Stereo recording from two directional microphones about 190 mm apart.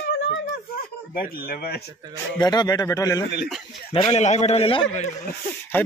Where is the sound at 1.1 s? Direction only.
50° left (ahead or behind).